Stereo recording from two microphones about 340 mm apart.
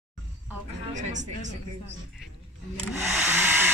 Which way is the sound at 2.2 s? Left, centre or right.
Centre.